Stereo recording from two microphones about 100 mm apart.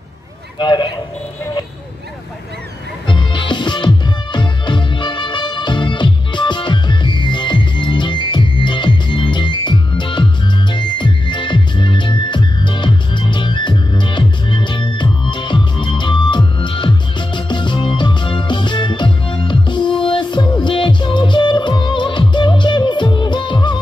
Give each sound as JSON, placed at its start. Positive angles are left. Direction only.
{"t": 0.6, "sound": "speech", "side_deg": 50}
{"t": 3.1, "sound": "music", "side_deg": 50}